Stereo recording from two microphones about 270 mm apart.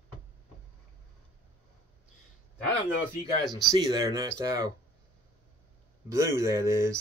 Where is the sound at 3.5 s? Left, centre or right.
Centre.